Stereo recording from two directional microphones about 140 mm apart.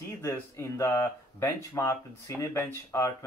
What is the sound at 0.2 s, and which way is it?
Speech, 20° left (ahead or behind).